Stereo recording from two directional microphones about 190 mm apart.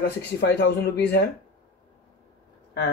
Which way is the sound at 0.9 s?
60° left (ahead or behind).